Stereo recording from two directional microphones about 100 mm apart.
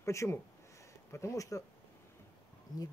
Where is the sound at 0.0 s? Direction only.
30° left (ahead or behind).